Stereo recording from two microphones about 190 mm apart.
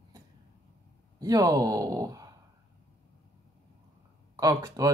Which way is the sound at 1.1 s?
20° right (ahead or behind).